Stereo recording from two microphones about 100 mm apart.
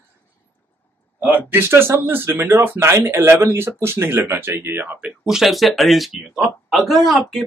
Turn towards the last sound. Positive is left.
turn(degrees=0)  # may be behind; listen again after turning